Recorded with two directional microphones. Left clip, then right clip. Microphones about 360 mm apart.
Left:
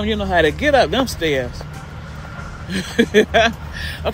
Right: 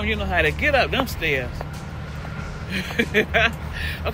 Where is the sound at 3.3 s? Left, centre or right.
Centre.